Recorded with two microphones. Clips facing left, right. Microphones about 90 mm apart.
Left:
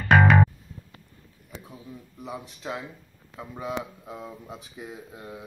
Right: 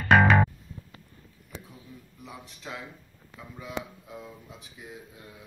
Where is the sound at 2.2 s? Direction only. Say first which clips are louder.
Left 7 dB; 30° left (ahead or behind).